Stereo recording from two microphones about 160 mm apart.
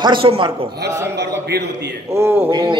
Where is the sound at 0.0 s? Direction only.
35° right (ahead or behind).